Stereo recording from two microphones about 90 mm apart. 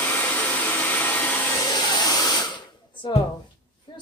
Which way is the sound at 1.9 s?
45° left (ahead or behind).